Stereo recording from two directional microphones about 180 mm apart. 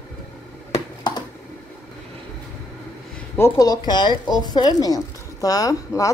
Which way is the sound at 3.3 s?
15° left (ahead or behind).